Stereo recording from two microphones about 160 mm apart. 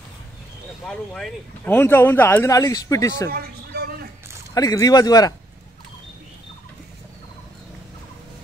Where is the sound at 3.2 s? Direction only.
80° right.